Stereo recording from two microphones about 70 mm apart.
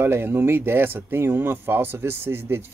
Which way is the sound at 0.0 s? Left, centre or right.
Right.